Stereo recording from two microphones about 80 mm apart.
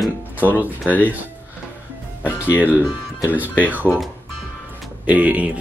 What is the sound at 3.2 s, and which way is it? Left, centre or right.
Speech, right.